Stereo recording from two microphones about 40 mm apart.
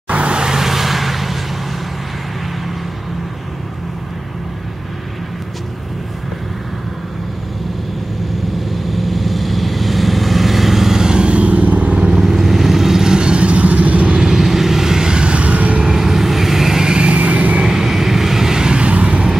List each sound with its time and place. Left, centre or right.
0.1 s vehicle: right; by 1.4 s centre
8.5 s vehicle: centre
11.2 s vehicle: right
11.9 s vehicle: right
12.2 s vehicle: centre; by 14.1 s right
14.1 s vehicle: centre; by 15.9 s right
15.9 s vehicle: centre; by 17.6 s right
17.6 s vehicle: centre
18.8 s vehicle: right